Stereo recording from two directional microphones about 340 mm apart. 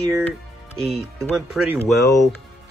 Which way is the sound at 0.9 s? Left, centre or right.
Centre.